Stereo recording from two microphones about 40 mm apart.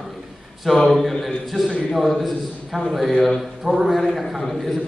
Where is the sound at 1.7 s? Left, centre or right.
Centre.